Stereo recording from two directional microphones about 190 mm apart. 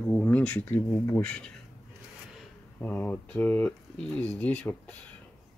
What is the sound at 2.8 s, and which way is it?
Speech, 5° left (ahead or behind).